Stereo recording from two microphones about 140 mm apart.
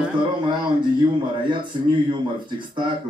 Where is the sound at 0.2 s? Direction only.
35° right (ahead or behind).